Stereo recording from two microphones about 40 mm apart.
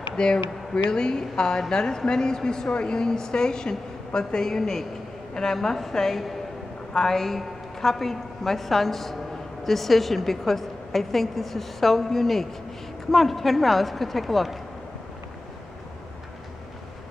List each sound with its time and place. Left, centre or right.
0.1 s a woman's voice: centre